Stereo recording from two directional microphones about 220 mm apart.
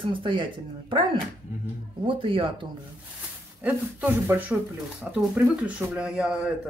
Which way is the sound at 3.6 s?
5° right (ahead or behind).